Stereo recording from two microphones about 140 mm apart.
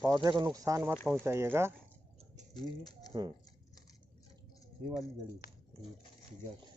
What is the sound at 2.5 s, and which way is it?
Speech, 30° left (ahead or behind).